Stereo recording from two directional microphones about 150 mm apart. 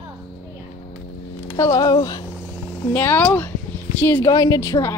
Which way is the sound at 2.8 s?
15° left (ahead or behind).